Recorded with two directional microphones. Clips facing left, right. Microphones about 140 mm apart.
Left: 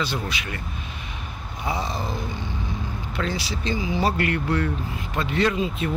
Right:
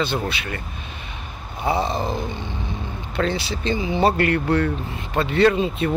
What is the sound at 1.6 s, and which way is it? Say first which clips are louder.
Speech: right 6 dB; 30° right (ahead or behind).